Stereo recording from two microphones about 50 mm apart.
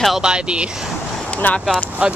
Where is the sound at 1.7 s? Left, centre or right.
Centre.